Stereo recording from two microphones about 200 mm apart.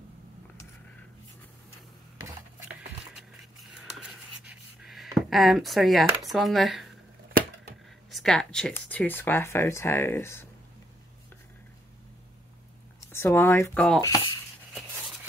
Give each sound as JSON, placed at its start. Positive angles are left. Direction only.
{"t": 2.2, "sound": "a sound", "side_deg": -5}
{"t": 8.1, "sound": "speech", "side_deg": 0}
{"t": 13.1, "sound": "speech", "side_deg": 10}
{"t": 14.0, "sound": "speech", "side_deg": 20}